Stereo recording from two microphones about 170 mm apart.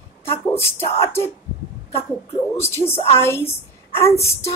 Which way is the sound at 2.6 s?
15° left (ahead or behind).